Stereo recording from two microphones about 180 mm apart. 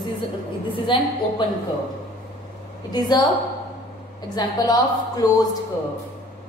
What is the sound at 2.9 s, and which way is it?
Speech, 25° left (ahead or behind).